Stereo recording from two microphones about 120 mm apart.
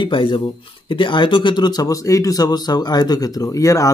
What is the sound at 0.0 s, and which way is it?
Speech, 45° left (ahead or behind).